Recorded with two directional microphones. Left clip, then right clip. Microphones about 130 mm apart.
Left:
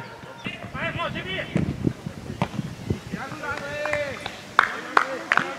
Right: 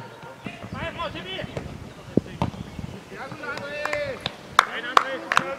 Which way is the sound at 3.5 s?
35° right (ahead or behind).